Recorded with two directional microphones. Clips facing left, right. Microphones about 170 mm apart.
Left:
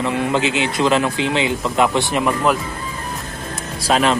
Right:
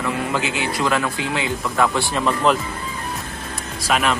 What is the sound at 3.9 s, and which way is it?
Speech, 30° left (ahead or behind).